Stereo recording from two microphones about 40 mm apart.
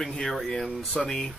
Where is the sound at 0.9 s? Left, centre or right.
Centre.